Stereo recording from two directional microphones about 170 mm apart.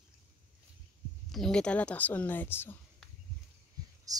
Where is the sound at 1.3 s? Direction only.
5° left (ahead or behind).